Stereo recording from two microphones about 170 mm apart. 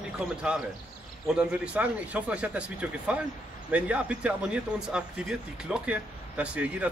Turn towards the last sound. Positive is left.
turn(degrees=-10)  # may be behind; listen again after turning